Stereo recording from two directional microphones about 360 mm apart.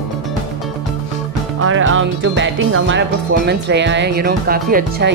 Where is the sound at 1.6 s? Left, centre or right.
Right.